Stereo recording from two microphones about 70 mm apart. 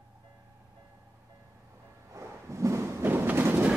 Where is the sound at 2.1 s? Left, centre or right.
Right.